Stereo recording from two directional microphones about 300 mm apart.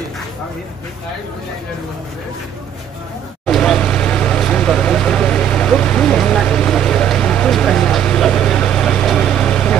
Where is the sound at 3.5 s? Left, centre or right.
Centre.